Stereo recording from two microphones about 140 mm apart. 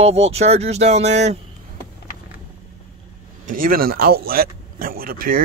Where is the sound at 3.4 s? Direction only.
90° right.